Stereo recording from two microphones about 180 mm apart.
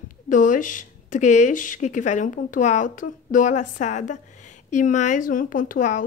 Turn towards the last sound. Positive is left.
turn(degrees=45)  # may be behind; listen again after turning